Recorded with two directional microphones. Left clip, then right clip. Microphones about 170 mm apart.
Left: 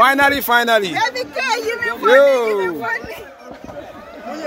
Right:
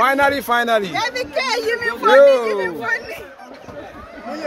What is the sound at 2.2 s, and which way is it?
Speech, 20° left (ahead or behind).